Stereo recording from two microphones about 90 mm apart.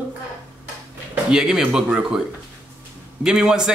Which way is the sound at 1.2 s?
5° right (ahead or behind).